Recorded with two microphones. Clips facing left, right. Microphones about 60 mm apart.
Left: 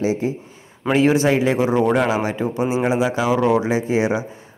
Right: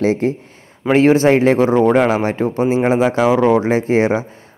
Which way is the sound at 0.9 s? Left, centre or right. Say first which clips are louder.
Right 5 dB; right.